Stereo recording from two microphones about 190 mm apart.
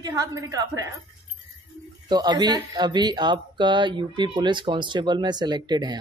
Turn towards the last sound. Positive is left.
turn(degrees=-20)  # may be behind; listen again after turning